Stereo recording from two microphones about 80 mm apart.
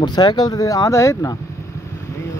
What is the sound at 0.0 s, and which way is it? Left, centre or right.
Speech, left.